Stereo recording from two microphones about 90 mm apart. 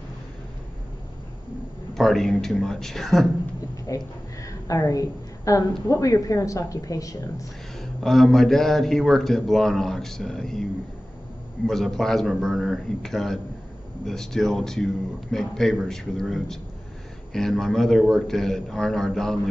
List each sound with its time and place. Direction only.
2.0 s a man's voice: 5° left (ahead or behind)
3.8 s a sound: 40° left (ahead or behind)
5.9 s speech: 40° left (ahead or behind)
7.8 s a man's voice: centre (ahead or behind)
11.6 s a man's voice: 5° left (ahead or behind)